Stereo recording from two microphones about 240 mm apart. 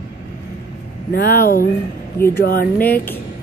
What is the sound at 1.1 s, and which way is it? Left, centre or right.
Speech, left.